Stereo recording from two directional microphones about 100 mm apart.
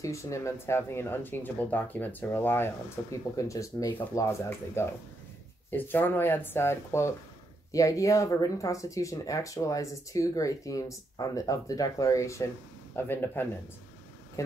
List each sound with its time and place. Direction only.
0.0 s speech: 30° left (ahead or behind)